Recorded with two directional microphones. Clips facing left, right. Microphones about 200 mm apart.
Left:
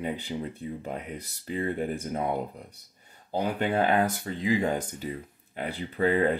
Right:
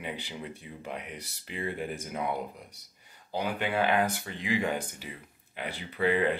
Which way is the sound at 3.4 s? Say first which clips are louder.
Left 3 dB; 40° left (ahead or behind).